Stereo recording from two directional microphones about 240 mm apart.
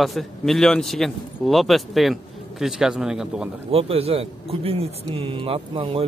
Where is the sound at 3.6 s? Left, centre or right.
Right.